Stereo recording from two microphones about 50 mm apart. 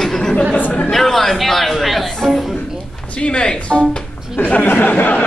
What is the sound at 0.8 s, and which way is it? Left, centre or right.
Speech, centre.